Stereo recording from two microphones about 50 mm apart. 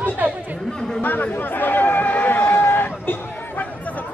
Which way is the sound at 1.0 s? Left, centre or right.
Left.